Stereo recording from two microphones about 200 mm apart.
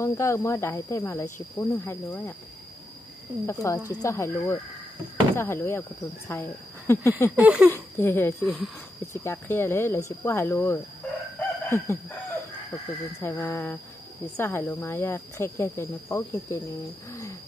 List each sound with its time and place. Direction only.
0.0 s speech: 15° left (ahead or behind)
3.4 s speech: 15° left (ahead or behind)
7.3 s a sound: 5° right (ahead or behind)
7.7 s speech: 10° left (ahead or behind)
8.5 s speech: 5° right (ahead or behind)
9.0 s speech: 15° left (ahead or behind)
11.0 s chicken: 10° left (ahead or behind)
13.2 s speech: 15° left (ahead or behind)
17.1 s wild animals: 15° left (ahead or behind)